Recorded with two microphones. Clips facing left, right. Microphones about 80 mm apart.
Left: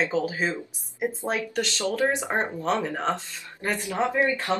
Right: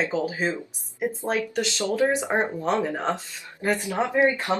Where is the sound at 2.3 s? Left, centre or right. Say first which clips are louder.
Right 2 dB; centre.